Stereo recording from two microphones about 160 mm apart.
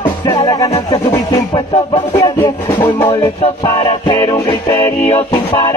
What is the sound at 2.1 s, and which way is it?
Music, 20° left (ahead or behind).